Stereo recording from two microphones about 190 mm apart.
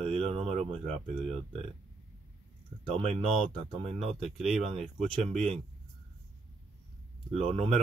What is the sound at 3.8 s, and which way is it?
Speech, 30° right (ahead or behind).